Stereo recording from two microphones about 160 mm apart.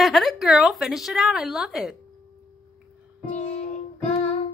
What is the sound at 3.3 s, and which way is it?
Music, 45° left (ahead or behind).